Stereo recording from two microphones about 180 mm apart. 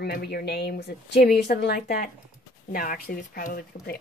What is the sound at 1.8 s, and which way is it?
Speech, 55° left (ahead or behind).